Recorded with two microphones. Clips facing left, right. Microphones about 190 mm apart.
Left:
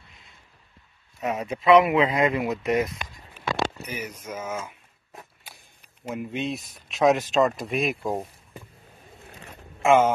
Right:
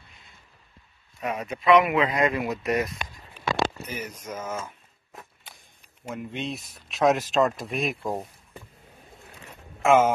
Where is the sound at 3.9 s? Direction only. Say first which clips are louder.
Left 1 dB; 10° left (ahead or behind).